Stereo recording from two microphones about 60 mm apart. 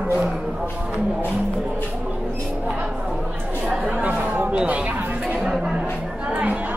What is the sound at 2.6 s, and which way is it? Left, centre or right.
Speech, centre.